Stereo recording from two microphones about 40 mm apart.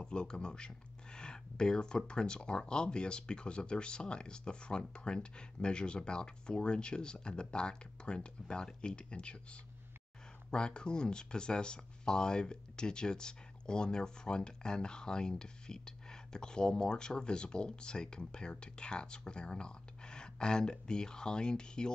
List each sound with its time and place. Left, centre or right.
0.0 s speech: left